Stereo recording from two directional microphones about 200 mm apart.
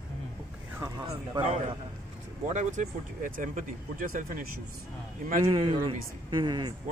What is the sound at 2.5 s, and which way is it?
Speech, 35° right (ahead or behind).